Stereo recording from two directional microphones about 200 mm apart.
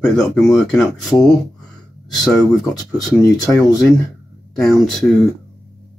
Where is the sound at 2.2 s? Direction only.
Centre (ahead or behind).